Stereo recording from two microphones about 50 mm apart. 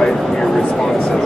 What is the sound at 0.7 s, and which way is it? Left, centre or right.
Speech, centre.